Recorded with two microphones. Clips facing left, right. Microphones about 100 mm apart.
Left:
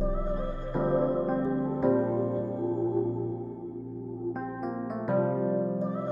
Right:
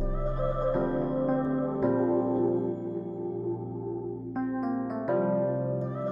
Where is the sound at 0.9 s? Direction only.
25° left (ahead or behind).